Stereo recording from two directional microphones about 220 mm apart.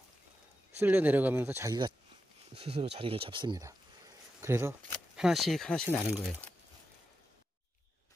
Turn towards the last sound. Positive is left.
turn(degrees=0)  # may be behind; listen again after turning